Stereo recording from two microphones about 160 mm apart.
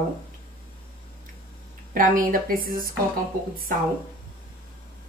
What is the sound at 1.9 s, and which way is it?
Speech, 55° right (ahead or behind).